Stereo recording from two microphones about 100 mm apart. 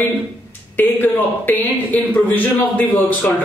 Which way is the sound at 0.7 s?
20° left (ahead or behind).